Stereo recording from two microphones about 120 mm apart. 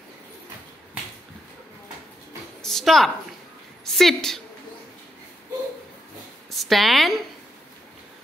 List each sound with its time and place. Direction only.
2.6 s a woman's voice: 5° left (ahead or behind)
6.5 s a woman's voice: centre (ahead or behind)